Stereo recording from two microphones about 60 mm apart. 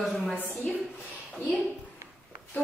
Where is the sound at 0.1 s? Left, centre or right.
Centre.